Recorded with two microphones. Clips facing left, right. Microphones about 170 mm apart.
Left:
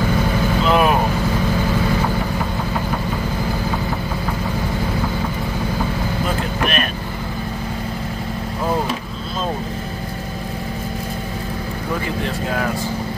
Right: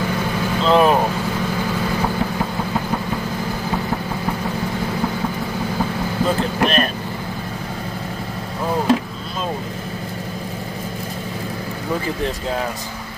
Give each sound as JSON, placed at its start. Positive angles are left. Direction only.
{"t": 0.7, "sound": "vehicle", "side_deg": -30}
{"t": 6.6, "sound": "vehicle", "side_deg": -35}